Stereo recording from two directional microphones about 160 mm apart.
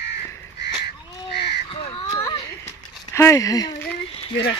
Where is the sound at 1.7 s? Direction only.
35° left (ahead or behind).